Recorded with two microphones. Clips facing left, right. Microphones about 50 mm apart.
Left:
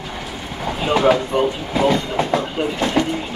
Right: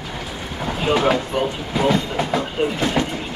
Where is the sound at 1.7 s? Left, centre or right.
Centre.